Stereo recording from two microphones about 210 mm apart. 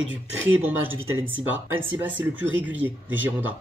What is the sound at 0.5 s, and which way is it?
Speech, 10° right (ahead or behind).